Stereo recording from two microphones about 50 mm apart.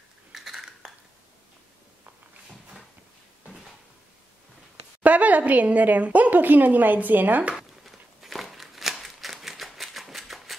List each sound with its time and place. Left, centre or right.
0.3 s a sound: centre
5.0 s a woman's voice: right
7.5 s walk: centre